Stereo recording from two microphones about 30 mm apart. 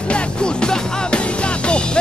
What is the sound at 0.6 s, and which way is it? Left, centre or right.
Music, left.